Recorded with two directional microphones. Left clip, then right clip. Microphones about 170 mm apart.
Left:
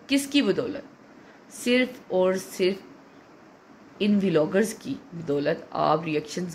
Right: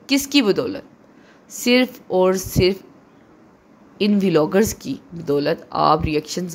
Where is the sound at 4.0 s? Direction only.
35° right (ahead or behind).